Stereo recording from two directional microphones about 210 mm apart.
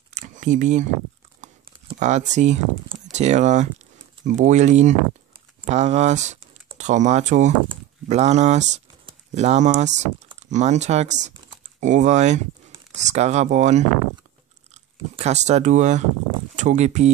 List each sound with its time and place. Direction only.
0.1 s a sound: 35° right (ahead or behind)
2.0 s speech: 35° right (ahead or behind)
15.1 s speech: 30° right (ahead or behind)